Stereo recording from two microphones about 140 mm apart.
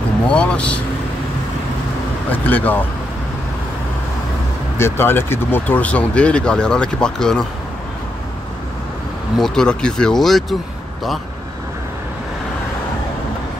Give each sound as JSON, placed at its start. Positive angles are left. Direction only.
{"t": 0.3, "sound": "speech", "side_deg": 10}
{"t": 2.3, "sound": "speech", "side_deg": 10}
{"t": 4.7, "sound": "speech", "side_deg": 15}
{"t": 9.4, "sound": "speech", "side_deg": 5}